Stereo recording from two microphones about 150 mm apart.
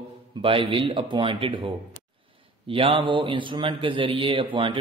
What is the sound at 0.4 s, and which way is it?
Speech, 35° right (ahead or behind).